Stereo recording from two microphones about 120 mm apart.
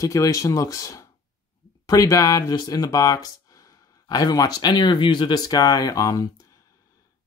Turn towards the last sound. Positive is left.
turn(degrees=30)  # may be behind; listen again after turning